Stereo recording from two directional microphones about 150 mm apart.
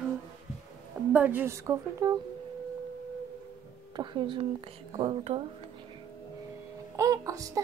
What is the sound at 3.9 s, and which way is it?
A woman's voice, 35° right (ahead or behind).